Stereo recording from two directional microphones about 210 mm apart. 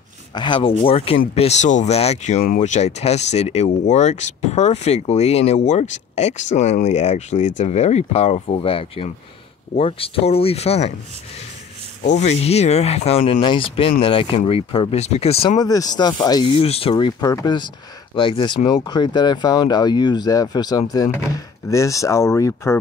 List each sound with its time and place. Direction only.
0.3 s speech: 20° left (ahead or behind)
12.0 s speech: 35° left (ahead or behind); by 22.8 s 15° left (ahead or behind)